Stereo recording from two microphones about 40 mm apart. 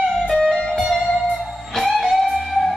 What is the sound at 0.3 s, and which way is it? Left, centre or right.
Music, centre.